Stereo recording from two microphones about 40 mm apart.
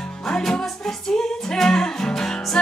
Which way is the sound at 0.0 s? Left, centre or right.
Centre.